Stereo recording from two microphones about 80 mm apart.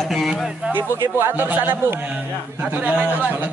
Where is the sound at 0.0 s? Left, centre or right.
Centre.